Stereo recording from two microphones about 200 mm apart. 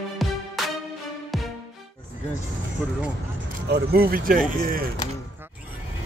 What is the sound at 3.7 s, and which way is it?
Speech, 50° right (ahead or behind).